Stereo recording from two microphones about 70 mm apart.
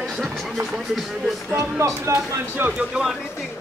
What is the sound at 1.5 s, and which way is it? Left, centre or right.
Speech, right.